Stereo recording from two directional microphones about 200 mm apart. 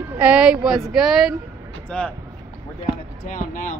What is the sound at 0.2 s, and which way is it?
Speech, 5° right (ahead or behind).